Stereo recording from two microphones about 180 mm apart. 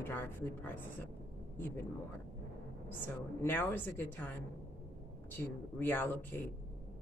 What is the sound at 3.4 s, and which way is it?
Speech, 10° left (ahead or behind).